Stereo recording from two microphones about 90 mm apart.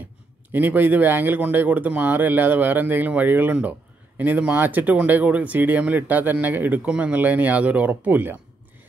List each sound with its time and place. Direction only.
0.5 s speech: 20° right (ahead or behind)